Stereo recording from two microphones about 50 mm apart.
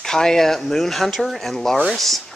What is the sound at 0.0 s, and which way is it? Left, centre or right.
Speech, centre.